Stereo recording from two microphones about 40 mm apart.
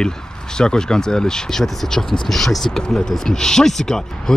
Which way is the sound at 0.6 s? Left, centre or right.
Centre.